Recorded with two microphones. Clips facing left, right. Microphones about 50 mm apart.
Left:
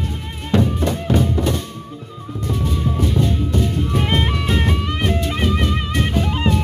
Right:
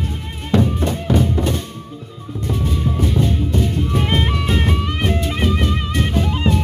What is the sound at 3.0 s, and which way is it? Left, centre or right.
Music, centre.